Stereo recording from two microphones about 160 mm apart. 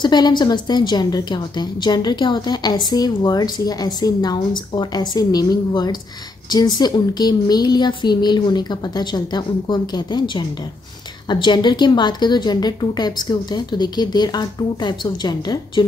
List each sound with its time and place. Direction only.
0.0 s a woman's voice: 25° left (ahead or behind)